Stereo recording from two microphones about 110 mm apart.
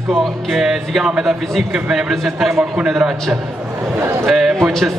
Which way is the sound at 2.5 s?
20° right (ahead or behind).